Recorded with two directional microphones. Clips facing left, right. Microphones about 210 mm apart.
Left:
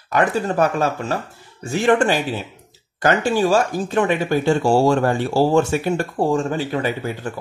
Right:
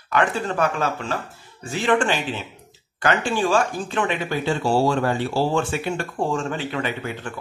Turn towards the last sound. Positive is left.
turn(degrees=40)  # may be behind; listen again after turning